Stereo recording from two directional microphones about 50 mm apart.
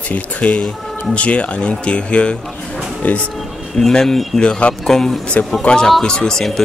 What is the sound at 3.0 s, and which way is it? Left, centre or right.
Speech, left.